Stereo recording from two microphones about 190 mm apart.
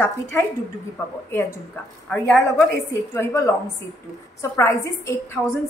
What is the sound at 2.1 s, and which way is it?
Speech, centre (ahead or behind).